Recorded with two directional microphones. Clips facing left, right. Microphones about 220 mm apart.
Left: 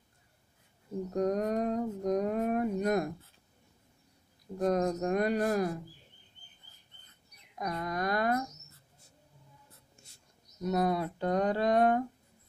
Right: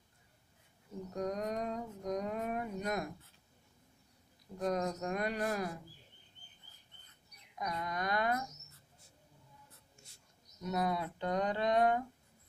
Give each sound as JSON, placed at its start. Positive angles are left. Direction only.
{"t": 1.1, "sound": "speech", "side_deg": 50}
{"t": 4.6, "sound": "speech", "side_deg": 45}
{"t": 7.5, "sound": "speech", "side_deg": 45}
{"t": 10.6, "sound": "speech", "side_deg": 45}